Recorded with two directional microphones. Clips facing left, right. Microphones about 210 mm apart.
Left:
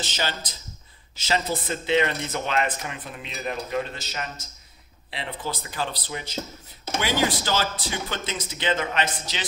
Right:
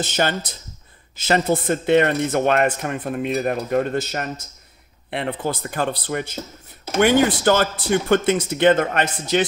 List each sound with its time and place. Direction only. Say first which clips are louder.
0.0 s speech: right 8 dB; 55° right (ahead or behind)